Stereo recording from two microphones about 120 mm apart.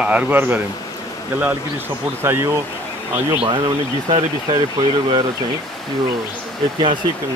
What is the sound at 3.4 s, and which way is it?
Speech, 35° right (ahead or behind).